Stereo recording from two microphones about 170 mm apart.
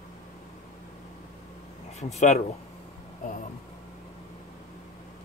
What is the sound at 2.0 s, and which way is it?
Speech, 40° left (ahead or behind).